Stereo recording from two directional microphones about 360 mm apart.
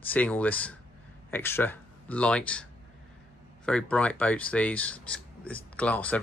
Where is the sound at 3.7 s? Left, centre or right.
Centre.